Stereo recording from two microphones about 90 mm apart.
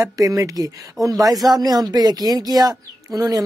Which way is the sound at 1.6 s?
45° right (ahead or behind).